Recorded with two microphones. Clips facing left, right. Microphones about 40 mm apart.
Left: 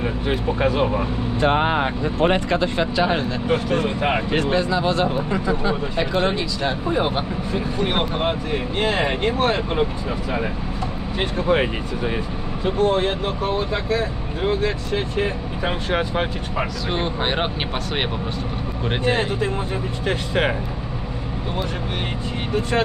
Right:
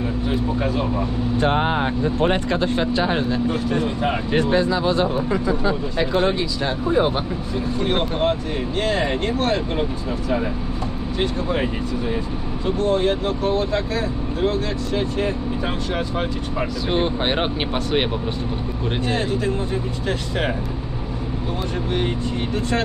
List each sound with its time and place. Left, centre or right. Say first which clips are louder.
0.0 s speech: even; left
1.4 s speech: left 2 dB; left
2.2 s speech: left 3 dB; left
3.8 s speech: left 1 dB; left
4.4 s speech: right 1 dB; left
7.5 s speech: even; left
11.1 s speech: left 3 dB; left; by 15.2 s centre
15.2 s speech: right 1 dB; left
16.9 s speech: right 3 dB; centre
18.9 s speech: left 2 dB; left